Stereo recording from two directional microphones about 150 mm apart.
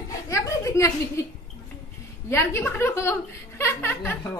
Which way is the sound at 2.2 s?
20° left (ahead or behind).